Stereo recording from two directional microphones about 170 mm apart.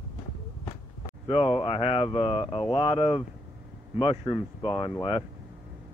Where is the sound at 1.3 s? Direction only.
35° left (ahead or behind).